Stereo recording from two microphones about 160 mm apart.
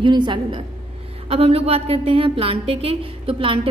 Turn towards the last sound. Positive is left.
turn(degrees=-35)  # may be behind; listen again after turning